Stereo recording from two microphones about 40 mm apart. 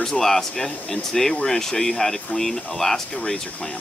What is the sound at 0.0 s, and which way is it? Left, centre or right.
Speech, centre.